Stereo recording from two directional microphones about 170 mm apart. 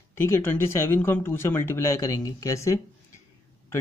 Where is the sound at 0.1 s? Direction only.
15° left (ahead or behind).